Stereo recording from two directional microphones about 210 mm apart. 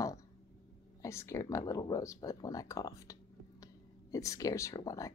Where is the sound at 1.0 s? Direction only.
15° left (ahead or behind).